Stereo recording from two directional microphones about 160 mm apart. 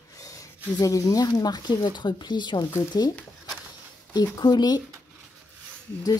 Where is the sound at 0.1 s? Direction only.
20° left (ahead or behind).